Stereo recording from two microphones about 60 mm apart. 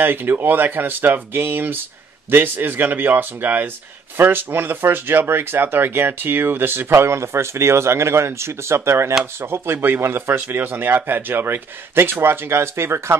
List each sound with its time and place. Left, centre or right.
0.0 s speech: right